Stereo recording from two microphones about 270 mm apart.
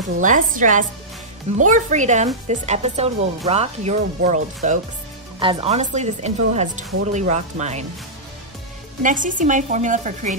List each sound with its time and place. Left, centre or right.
0.2 s speech: right
9.0 s speech: right